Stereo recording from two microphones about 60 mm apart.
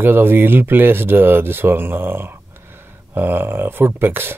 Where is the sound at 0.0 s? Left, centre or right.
Right.